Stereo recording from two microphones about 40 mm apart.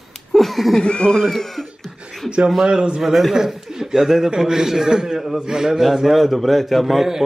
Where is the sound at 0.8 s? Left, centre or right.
Left.